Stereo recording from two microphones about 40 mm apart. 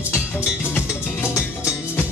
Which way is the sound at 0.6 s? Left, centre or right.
Left.